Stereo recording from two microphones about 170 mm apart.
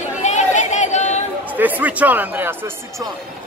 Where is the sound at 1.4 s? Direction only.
10° right (ahead or behind).